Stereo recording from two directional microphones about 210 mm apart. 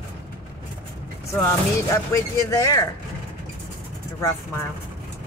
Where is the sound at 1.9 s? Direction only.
15° left (ahead or behind).